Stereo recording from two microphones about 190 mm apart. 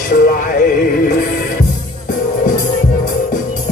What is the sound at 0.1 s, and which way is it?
Synthetic singing, 45° left (ahead or behind).